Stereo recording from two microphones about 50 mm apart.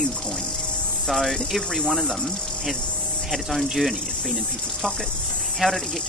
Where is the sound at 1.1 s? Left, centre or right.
Centre.